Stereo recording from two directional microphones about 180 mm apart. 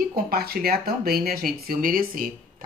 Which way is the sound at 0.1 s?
55° right (ahead or behind).